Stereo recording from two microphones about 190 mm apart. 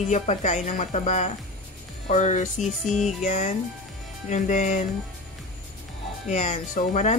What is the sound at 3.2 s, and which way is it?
Speech, 35° left (ahead or behind).